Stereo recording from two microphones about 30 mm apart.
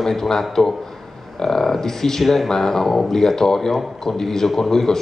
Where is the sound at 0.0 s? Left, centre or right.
Centre.